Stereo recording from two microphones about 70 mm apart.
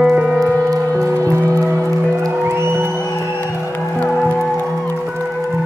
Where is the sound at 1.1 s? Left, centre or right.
Right.